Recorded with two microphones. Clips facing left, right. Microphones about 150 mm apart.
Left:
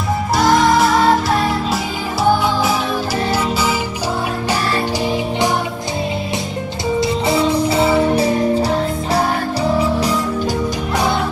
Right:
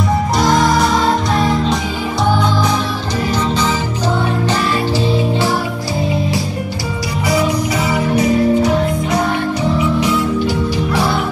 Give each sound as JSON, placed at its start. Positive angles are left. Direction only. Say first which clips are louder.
{"t": 7.2, "sound": "music", "louder": "right 2 dB", "side_deg": 25}